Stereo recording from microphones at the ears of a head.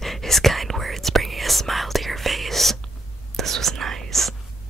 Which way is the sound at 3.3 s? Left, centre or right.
Right.